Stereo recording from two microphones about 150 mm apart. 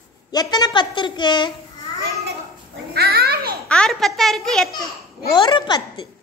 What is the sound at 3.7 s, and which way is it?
A child's voice, 5° left (ahead or behind).